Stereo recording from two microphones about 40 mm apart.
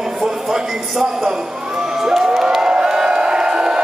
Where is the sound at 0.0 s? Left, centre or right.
Centre.